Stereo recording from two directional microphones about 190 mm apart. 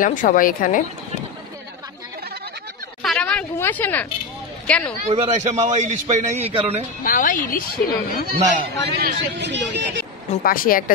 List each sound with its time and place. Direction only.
0.0 s a woman's voice: 45° left (ahead or behind)
3.0 s a sound: 5° left (ahead or behind)
4.6 s a man's voice: 5° left (ahead or behind)
5.0 s a man's voice: 35° right (ahead or behind)
7.0 s a woman's voice: 45° left (ahead or behind)
8.9 s speech: 60° right (ahead or behind)
10.4 s a woman's voice: 50° left (ahead or behind)